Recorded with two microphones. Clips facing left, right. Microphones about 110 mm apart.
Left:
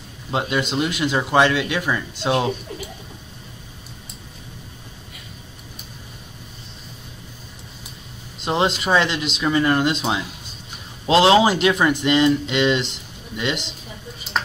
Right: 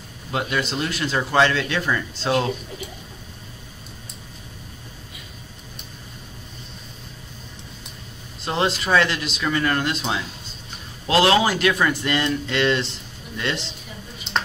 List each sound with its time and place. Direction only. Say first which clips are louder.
0.3 s a man's voice: left 2 dB; 20° left (ahead or behind)
8.4 s a man's voice: left 2 dB; 20° left (ahead or behind)
14.3 s ping: even; 5° left (ahead or behind)